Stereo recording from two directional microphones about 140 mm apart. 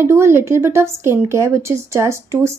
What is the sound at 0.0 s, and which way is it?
A woman's voice, 20° right (ahead or behind).